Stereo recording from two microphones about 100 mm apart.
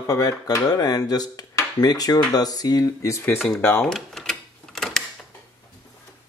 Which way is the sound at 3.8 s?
Centre (ahead or behind).